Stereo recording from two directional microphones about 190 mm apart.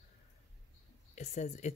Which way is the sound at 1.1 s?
35° left (ahead or behind).